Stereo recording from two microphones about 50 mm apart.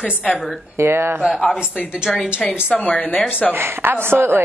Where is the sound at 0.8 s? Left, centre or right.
Right.